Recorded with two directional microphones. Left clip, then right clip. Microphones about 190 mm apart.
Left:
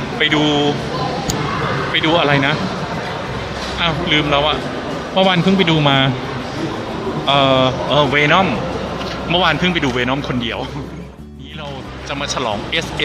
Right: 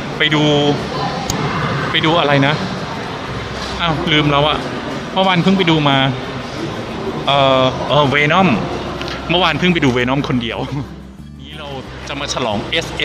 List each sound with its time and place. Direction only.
0.2 s speech: centre (ahead or behind)
1.9 s speech: 5° left (ahead or behind)
3.8 s speech: 5° right (ahead or behind)
5.1 s a man's voice: 5° left (ahead or behind)
7.2 s speech: 5° left (ahead or behind)
8.0 s speech: 15° right (ahead or behind)
12.4 s speech: 5° right (ahead or behind)